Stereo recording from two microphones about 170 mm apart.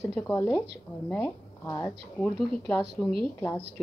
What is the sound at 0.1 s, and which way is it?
Speech, 10° left (ahead or behind).